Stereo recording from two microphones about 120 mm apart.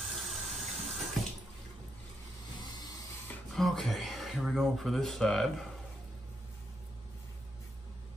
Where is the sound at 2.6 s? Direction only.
35° left (ahead or behind).